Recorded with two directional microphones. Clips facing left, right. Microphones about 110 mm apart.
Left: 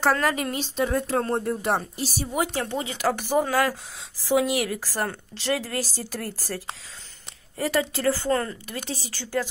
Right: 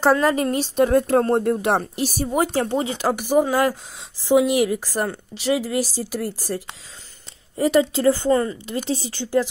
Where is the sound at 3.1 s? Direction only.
15° right (ahead or behind).